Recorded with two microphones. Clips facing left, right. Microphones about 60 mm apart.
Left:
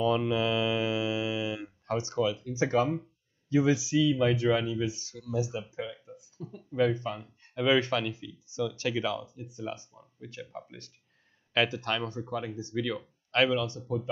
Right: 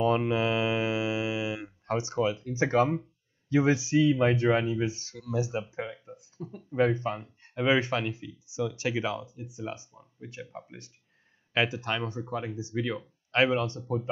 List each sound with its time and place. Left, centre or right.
0.0 s speech: right
13.5 s speech: right